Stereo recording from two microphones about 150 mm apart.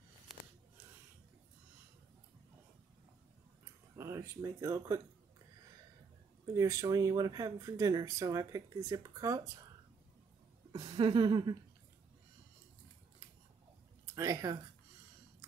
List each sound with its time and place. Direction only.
4.0 s speech: 20° right (ahead or behind)
6.4 s speech: 25° right (ahead or behind)
10.7 s a sound: 35° right (ahead or behind)
14.1 s speech: 20° right (ahead or behind)